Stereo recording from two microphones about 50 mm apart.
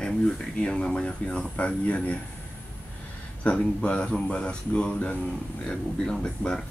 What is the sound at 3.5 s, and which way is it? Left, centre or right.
Speech, left.